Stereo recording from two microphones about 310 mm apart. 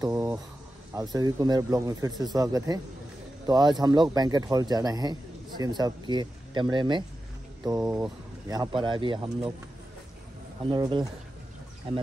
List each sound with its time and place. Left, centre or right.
0.0 s a sound: centre
0.9 s speech: centre
10.6 s speech: centre